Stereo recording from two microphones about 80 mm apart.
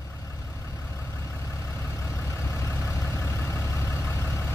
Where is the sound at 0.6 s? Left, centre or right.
Left.